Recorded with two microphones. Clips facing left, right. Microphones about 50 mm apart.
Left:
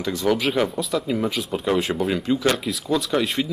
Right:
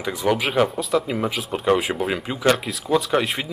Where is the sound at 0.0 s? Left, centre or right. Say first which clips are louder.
Even; centre.